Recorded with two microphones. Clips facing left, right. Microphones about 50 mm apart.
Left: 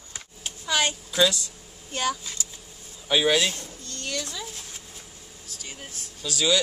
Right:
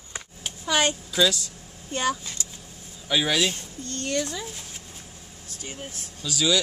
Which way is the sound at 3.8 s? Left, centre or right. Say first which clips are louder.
Right 6 dB; right.